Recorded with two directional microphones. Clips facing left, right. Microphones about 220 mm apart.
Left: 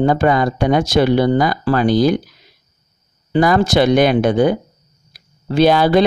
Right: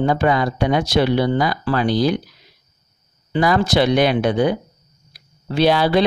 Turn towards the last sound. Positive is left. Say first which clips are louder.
# left 4 dB
turn(degrees=50)  # may be behind; listen again after turning